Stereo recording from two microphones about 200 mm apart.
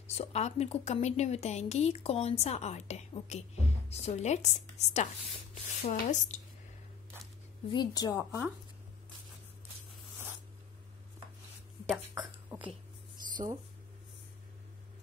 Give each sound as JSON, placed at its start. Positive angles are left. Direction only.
{"t": 0.1, "sound": "a woman's voice", "side_deg": 30}
{"t": 7.7, "sound": "a woman's voice", "side_deg": 20}
{"t": 12.1, "sound": "a sound", "side_deg": -10}